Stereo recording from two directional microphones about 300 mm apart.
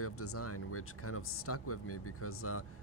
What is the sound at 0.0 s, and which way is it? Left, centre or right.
Speech, left.